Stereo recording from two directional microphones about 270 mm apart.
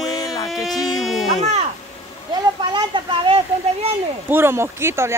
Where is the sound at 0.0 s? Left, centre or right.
Centre.